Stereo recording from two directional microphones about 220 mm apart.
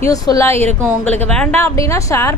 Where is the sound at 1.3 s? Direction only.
5° left (ahead or behind).